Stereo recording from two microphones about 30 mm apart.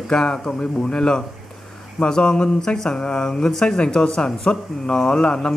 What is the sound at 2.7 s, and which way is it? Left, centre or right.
A man's voice, centre.